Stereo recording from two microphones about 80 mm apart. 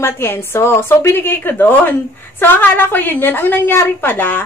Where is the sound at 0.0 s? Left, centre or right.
Left.